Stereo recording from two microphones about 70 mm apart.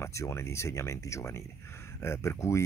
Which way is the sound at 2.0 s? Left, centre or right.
Left.